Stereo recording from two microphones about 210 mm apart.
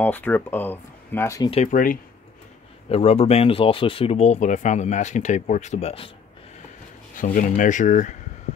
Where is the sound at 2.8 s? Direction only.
30° left (ahead or behind).